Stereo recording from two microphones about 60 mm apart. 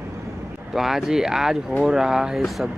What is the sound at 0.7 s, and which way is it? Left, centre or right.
Speech, centre.